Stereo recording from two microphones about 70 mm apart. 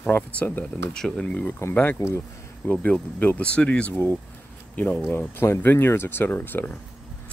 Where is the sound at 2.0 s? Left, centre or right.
Left.